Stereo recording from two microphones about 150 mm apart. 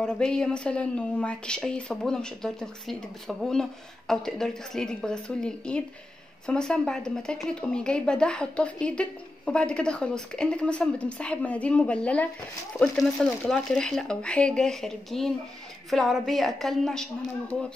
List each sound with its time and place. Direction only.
0.0 s a woman's voice: 5° left (ahead or behind)